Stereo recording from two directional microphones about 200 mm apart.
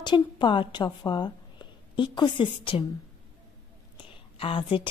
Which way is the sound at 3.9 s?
25° left (ahead or behind).